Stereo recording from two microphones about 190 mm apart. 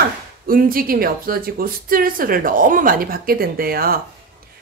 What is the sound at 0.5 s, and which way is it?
A woman's voice, 50° right (ahead or behind).